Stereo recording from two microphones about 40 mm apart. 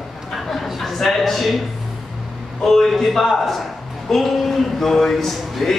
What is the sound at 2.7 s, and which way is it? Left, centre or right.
Speech, centre.